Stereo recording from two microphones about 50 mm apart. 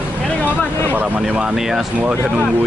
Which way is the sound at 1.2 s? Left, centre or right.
Right.